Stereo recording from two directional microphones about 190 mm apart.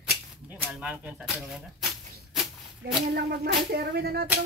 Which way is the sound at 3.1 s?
55° right (ahead or behind).